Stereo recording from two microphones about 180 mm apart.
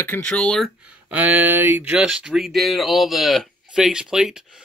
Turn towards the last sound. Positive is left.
turn(degrees=-5)  # may be behind; listen again after turning